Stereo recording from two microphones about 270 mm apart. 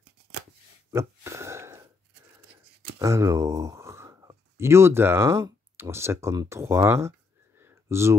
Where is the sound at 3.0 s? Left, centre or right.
Centre.